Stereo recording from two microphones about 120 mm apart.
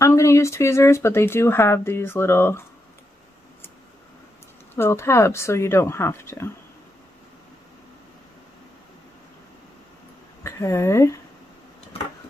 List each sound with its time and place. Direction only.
0.0 s speech: 25° left (ahead or behind)
4.7 s speech: 20° left (ahead or behind)
10.4 s a woman's voice: 25° left (ahead or behind)